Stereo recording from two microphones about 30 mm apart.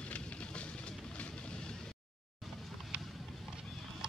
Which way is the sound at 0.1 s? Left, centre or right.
Left.